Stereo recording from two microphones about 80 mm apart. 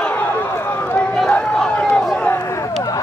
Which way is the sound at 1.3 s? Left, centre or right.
Centre.